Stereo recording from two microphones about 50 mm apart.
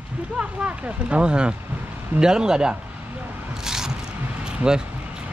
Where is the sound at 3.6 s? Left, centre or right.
Centre.